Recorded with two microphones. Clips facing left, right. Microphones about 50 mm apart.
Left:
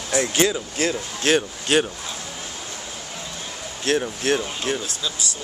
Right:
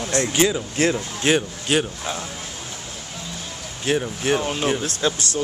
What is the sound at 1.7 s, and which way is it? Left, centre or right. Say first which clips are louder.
Speech: left 1 dB; centre.